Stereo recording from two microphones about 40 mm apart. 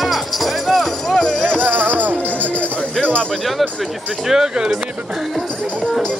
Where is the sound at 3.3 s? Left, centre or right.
Centre.